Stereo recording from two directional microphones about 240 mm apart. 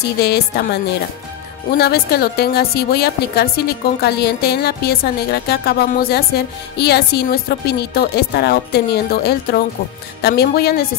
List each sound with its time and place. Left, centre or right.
0.2 s speech: left
1.8 s a woman's voice: left